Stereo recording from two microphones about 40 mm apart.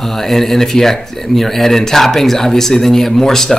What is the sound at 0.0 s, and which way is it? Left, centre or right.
Speech, centre.